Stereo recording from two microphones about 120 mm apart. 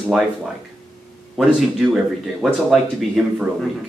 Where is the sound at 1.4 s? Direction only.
5° right (ahead or behind).